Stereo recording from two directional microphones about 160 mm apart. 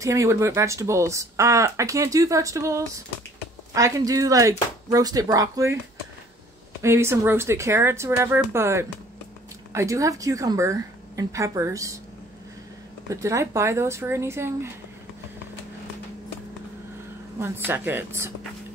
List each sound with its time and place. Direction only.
0.0 s speech: 20° right (ahead or behind)
6.8 s speech: 15° right (ahead or behind)
13.1 s speech: 20° right (ahead or behind)
17.4 s speech: 15° right (ahead or behind)